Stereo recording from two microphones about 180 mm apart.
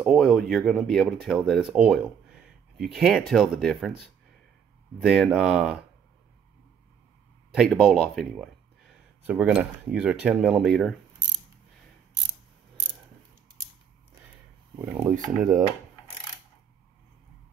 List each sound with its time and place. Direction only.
0.0 s speech: centre (ahead or behind)
5.0 s speech: centre (ahead or behind)
7.5 s speech: centre (ahead or behind)
12.1 s a sound: 90° right
14.9 s speech: 15° right (ahead or behind)